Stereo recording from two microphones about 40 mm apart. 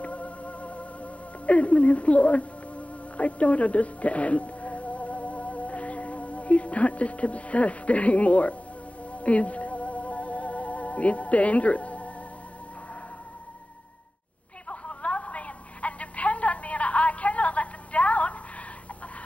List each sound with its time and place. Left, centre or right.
0.0 s music: left
14.7 s telephone: left